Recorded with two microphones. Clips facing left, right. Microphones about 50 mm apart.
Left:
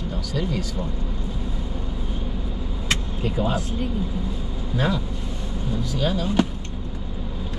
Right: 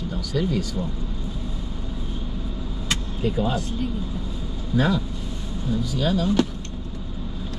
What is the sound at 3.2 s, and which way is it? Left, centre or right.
Speech, centre.